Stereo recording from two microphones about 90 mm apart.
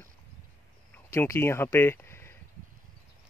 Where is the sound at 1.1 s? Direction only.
30° left (ahead or behind).